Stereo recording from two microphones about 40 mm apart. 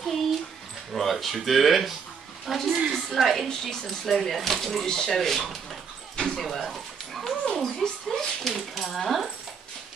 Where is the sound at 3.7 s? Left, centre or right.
Centre.